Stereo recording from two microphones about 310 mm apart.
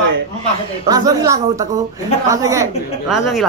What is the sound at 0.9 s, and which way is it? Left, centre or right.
A woman's voice, centre.